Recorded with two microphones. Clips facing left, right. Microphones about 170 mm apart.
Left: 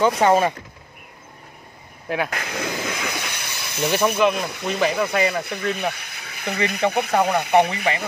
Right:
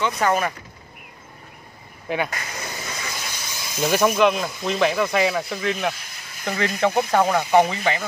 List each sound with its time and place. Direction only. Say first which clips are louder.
0.2 s speech: left 4 dB; 25° left (ahead or behind)
2.0 s speech: even; centre (ahead or behind)
2.3 s hiss: left 6 dB; 65° left (ahead or behind)
3.8 s speech: right 1 dB; centre (ahead or behind)
5.9 s a sound: left 3 dB; 65° left (ahead or behind)
7.1 s speech: even; 5° left (ahead or behind)